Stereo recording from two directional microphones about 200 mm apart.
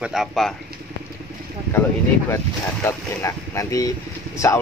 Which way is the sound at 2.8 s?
15° left (ahead or behind).